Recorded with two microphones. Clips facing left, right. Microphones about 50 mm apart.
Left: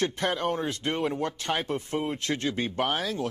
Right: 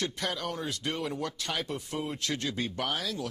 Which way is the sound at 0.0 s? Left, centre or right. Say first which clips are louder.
Left 6 dB; left.